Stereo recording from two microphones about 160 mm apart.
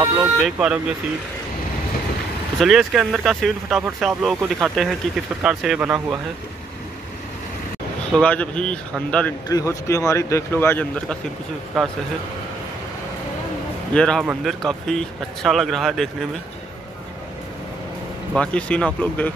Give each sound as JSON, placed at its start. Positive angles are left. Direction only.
{"t": 0.2, "sound": "speech", "side_deg": -5}
{"t": 2.6, "sound": "speech", "side_deg": 0}
{"t": 8.1, "sound": "speech", "side_deg": 5}
{"t": 9.5, "sound": "speech", "side_deg": 20}
{"t": 11.7, "sound": "speech", "side_deg": 0}
{"t": 13.9, "sound": "speech", "side_deg": 5}
{"t": 18.3, "sound": "speech", "side_deg": 5}